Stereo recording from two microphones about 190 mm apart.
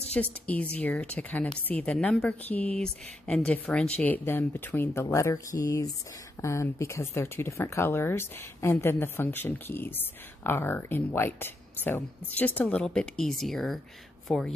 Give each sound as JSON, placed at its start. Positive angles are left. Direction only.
{"t": 0.1, "sound": "speech", "side_deg": 10}